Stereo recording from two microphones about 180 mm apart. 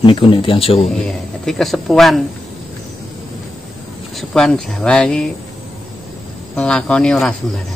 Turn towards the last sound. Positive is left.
turn(degrees=5)  # may be behind; listen again after turning